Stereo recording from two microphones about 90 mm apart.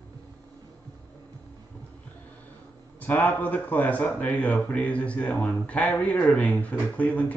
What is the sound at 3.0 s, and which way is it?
Speech, 25° left (ahead or behind).